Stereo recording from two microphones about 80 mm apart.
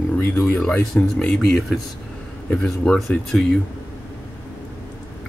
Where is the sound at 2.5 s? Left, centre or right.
Centre.